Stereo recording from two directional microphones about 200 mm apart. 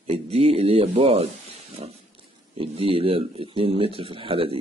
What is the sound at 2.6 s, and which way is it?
A man's voice, 30° right (ahead or behind).